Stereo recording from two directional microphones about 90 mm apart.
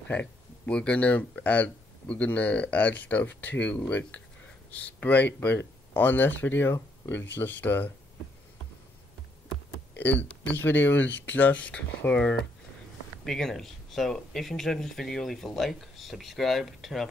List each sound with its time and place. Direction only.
0.1 s speech: 15° left (ahead or behind)
9.9 s speech: 20° left (ahead or behind); by 17.1 s centre (ahead or behind)